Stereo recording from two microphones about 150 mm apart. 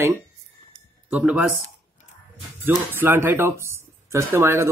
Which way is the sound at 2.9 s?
15° right (ahead or behind).